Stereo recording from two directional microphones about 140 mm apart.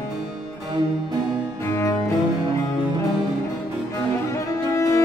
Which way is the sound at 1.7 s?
20° left (ahead or behind).